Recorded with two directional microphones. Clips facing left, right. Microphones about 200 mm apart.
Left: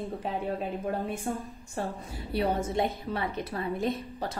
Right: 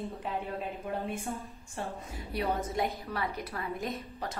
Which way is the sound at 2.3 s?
30° left (ahead or behind).